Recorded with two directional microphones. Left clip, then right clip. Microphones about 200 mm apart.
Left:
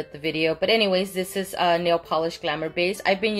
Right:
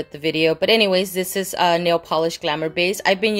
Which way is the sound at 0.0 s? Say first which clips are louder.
Right 5 dB; 40° right (ahead or behind).